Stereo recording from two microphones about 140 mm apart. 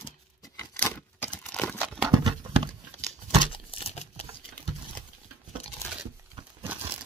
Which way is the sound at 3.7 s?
45° left (ahead or behind).